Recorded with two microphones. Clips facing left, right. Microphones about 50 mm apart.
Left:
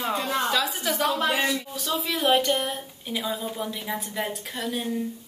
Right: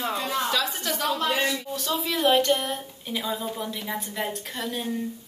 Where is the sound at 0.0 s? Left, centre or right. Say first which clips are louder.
Left 1 dB; centre.